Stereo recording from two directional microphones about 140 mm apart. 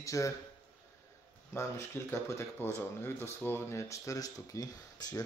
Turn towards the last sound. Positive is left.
turn(degrees=25)  # may be behind; listen again after turning